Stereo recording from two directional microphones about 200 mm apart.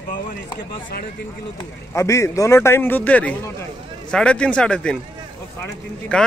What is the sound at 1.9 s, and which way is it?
Speech, 15° left (ahead or behind).